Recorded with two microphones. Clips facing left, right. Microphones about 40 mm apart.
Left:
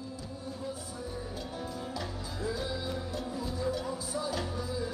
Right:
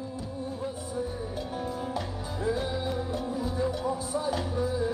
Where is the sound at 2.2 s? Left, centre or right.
Right.